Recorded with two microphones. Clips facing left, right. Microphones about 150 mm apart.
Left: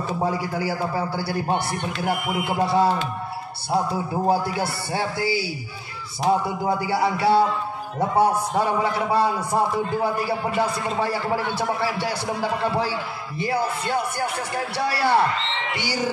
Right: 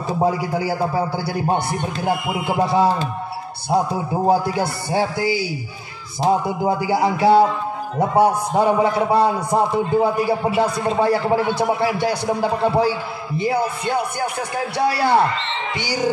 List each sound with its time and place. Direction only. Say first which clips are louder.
0.2 s a man's voice: right 6 dB; 15° right (ahead or behind)